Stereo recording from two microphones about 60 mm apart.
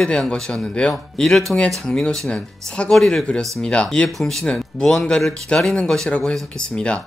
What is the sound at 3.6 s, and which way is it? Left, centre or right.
Speech, centre.